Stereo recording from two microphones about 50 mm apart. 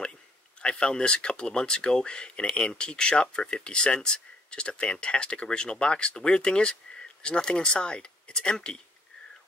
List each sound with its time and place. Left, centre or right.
0.6 s speech: left